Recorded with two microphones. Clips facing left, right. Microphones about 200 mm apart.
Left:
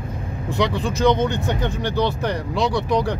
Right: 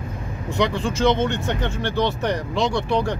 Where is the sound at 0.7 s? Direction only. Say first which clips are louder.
Left 2 dB; 15° left (ahead or behind).